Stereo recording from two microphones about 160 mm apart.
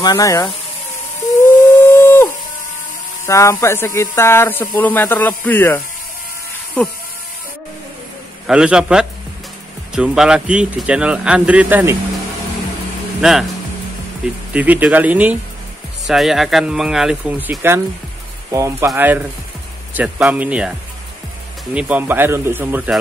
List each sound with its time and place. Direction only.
0.0 s speech: 25° left (ahead or behind)
1.8 s a sound: 15° left (ahead or behind)
3.3 s speech: 20° left (ahead or behind)
8.5 s speech: 5° right (ahead or behind)
13.2 s speech: centre (ahead or behind)
14.5 s speech: 10° right (ahead or behind)
21.7 s speech: 10° right (ahead or behind)